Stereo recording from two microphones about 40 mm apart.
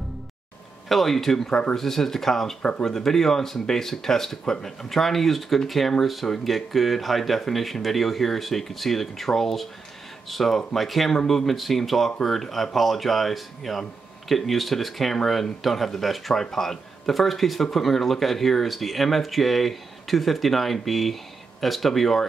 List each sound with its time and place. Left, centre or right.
0.8 s speech: centre
1.5 s speech: left
1.8 s speech: centre